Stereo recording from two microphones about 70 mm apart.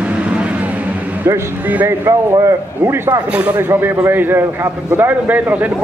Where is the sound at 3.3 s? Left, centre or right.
Right.